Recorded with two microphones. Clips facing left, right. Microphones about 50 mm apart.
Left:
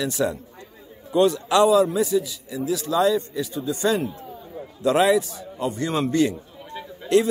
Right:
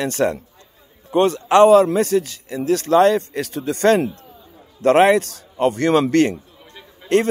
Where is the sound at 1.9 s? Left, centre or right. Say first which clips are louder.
Right 4 dB; right.